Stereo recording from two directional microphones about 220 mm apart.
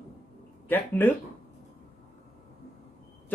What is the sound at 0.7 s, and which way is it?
Speech, 10° left (ahead or behind).